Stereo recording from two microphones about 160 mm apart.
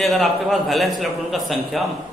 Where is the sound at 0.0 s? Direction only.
Centre (ahead or behind).